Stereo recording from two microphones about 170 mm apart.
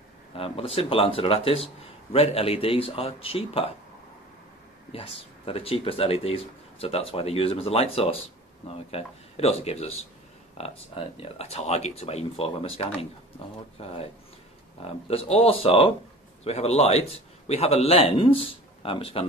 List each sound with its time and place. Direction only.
0.4 s speech: 35° left (ahead or behind)
4.9 s speech: 35° left (ahead or behind)